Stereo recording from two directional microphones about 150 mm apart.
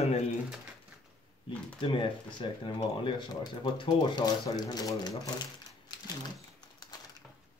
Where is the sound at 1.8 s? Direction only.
35° left (ahead or behind).